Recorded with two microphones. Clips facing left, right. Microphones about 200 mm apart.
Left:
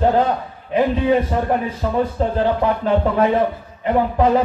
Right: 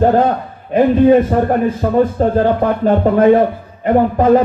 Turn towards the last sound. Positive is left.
turn(degrees=-50)  # may be behind; listen again after turning